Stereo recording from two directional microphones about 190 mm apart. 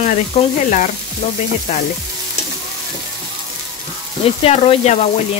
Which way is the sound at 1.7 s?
35° left (ahead or behind).